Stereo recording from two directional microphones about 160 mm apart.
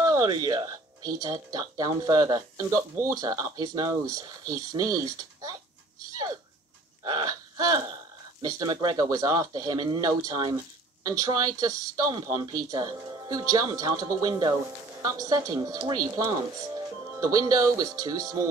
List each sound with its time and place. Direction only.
0.0 s speech: 20° right (ahead or behind)
7.0 s speech: 25° right (ahead or behind)